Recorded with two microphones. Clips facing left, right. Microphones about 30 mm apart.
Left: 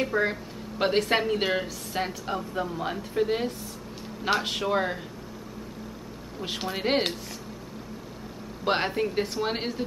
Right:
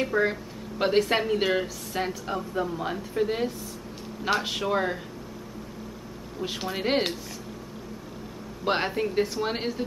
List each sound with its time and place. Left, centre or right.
0.0 s a woman's voice: centre
6.4 s a woman's voice: centre
8.6 s a woman's voice: centre